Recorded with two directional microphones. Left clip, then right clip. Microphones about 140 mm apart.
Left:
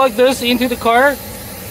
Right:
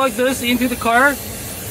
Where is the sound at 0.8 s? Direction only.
15° left (ahead or behind).